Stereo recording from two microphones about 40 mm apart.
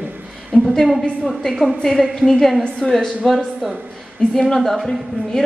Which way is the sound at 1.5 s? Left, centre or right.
Centre.